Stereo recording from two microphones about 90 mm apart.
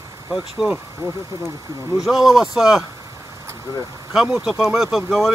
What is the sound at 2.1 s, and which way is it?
Speech, centre (ahead or behind).